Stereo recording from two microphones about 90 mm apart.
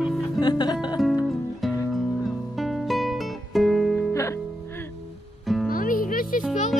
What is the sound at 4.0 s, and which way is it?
Music, 35° left (ahead or behind).